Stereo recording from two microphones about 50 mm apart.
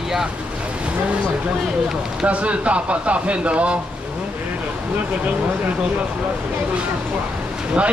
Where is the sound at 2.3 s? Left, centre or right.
Right.